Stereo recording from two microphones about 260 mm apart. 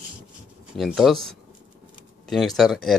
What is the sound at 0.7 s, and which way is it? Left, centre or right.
Speech, centre.